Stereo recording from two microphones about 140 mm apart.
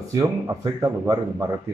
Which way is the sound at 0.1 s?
25° right (ahead or behind).